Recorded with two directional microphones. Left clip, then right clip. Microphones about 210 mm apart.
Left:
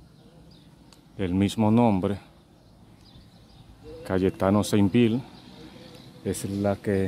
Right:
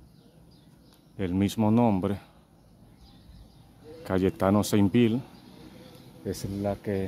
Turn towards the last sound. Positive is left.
turn(degrees=20)  # may be behind; listen again after turning